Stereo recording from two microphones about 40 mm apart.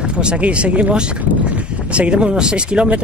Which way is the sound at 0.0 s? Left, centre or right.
Right.